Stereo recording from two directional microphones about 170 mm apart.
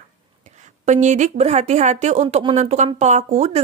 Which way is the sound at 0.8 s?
45° right (ahead or behind).